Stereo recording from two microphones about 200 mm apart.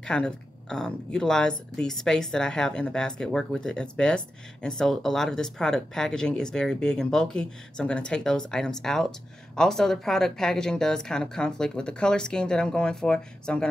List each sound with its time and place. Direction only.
0.0 s speech: 5° left (ahead or behind)